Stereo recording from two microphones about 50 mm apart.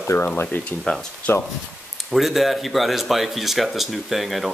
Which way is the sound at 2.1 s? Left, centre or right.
Centre.